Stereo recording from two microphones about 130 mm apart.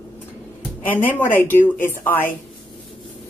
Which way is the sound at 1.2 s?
15° left (ahead or behind).